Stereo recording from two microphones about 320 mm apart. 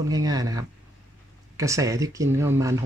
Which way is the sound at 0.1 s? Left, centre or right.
Centre.